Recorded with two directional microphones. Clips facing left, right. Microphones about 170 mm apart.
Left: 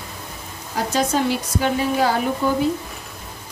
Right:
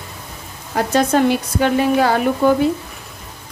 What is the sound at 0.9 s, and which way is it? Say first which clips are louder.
Speech: right 5 dB; 60° right (ahead or behind).